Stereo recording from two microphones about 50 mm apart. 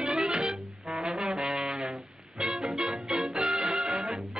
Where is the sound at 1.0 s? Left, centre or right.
Centre.